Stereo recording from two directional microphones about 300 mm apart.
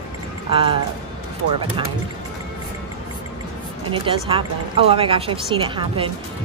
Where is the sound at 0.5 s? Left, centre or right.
Centre.